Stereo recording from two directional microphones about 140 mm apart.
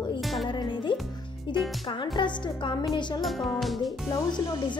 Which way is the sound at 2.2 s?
35° left (ahead or behind).